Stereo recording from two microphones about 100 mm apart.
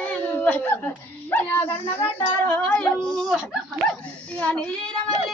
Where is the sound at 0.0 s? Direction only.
15° left (ahead or behind).